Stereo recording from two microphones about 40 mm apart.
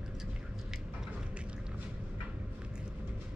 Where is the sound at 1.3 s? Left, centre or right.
Right.